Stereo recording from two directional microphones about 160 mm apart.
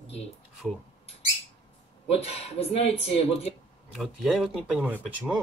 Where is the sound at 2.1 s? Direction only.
40° left (ahead or behind).